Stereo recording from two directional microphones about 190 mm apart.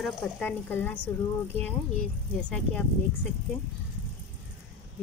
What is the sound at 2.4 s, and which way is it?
Speech, 5° left (ahead or behind).